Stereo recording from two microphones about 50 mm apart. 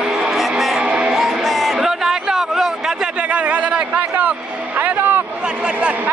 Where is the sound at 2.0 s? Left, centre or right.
Centre.